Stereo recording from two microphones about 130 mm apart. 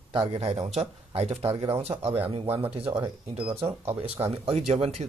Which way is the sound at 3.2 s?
15° right (ahead or behind).